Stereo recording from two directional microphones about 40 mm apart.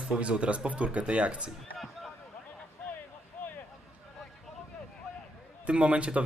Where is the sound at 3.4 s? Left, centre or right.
Left.